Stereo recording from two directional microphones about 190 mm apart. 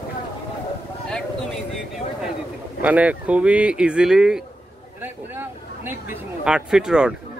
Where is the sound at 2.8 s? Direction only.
5° right (ahead or behind).